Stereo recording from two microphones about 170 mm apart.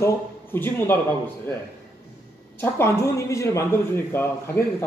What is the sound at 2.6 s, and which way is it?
Speech, 15° left (ahead or behind).